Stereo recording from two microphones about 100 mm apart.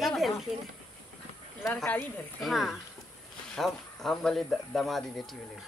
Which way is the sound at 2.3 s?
Centre (ahead or behind).